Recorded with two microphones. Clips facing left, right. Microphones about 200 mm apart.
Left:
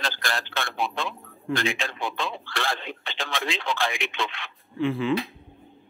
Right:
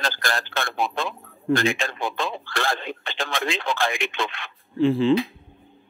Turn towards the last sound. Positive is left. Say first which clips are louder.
# right 6 dB
turn(degrees=-30)  # may be behind; listen again after turning